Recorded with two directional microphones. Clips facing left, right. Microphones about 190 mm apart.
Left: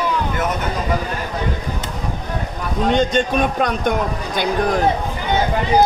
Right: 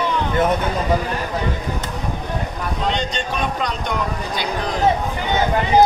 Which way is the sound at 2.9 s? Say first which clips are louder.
Left 12 dB; 50° left (ahead or behind).